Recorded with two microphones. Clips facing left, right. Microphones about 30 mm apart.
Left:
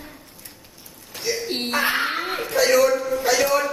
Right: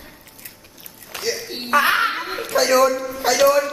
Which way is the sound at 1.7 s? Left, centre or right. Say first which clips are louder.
Right 6 dB; right.